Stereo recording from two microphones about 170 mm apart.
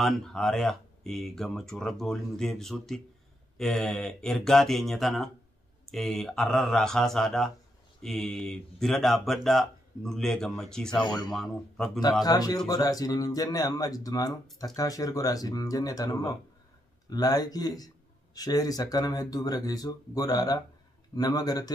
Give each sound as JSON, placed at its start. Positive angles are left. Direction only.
{"t": 0.0, "sound": "speech", "side_deg": 5}
{"t": 12.0, "sound": "speech", "side_deg": 20}